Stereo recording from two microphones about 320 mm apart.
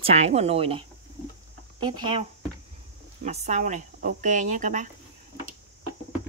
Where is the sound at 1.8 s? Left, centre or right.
Centre.